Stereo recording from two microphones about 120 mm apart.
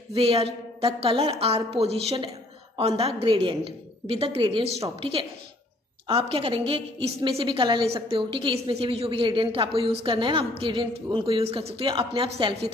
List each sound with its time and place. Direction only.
0.1 s a woman's voice: 55° right (ahead or behind)
3.2 s a woman's voice: 45° right (ahead or behind)